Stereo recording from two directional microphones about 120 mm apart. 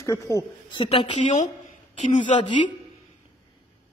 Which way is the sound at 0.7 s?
50° left (ahead or behind).